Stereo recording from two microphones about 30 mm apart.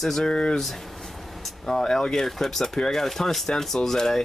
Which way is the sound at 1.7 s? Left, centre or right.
Centre.